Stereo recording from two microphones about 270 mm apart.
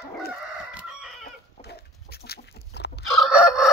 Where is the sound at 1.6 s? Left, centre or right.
Left.